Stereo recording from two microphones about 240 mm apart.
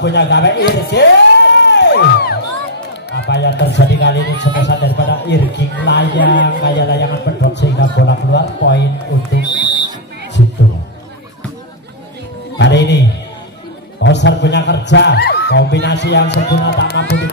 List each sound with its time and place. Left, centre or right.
0.0 s a man's voice: left
0.8 s music: left
3.1 s a man's voice: left
9.5 s music: centre
12.5 s speech: left
14.0 s a man's voice: left